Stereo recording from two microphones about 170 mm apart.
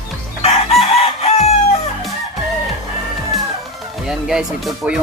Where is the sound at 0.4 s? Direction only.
35° left (ahead or behind).